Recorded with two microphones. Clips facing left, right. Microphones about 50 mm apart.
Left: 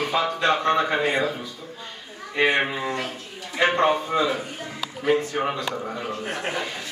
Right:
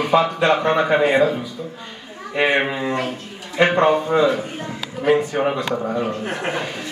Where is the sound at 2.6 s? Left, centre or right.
Right.